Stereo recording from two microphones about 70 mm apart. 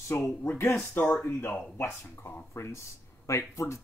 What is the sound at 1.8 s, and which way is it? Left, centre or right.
Speech, left.